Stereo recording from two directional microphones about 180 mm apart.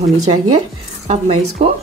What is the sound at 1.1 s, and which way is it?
Speech, 35° right (ahead or behind).